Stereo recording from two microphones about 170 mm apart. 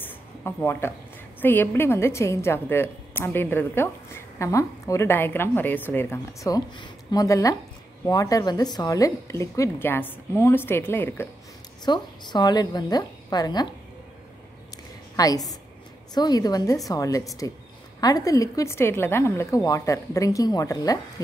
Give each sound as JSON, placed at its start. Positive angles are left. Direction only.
{"t": 0.0, "sound": "a sound", "side_deg": 15}
{"t": 1.4, "sound": "a woman's voice", "side_deg": 10}
{"t": 11.8, "sound": "speech", "side_deg": 25}
{"t": 15.1, "sound": "speech", "side_deg": 20}